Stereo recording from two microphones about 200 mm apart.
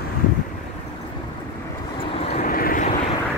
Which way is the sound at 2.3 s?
45° left (ahead or behind).